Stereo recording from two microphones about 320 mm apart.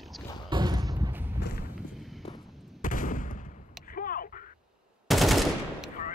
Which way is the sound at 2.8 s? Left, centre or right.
Left.